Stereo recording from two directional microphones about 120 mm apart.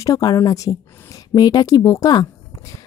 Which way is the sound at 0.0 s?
30° left (ahead or behind).